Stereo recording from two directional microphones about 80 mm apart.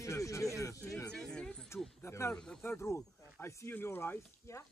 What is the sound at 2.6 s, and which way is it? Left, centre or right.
Speech, left.